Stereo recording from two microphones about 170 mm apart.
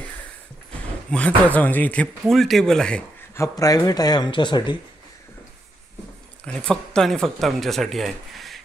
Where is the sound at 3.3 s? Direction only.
20° left (ahead or behind).